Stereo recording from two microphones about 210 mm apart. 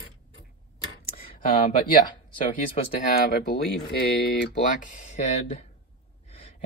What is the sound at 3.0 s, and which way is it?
Speech, 45° left (ahead or behind).